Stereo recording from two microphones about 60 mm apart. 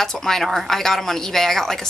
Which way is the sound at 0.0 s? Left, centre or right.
Centre.